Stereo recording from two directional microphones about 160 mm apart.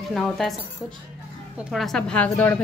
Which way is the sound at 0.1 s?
Centre (ahead or behind).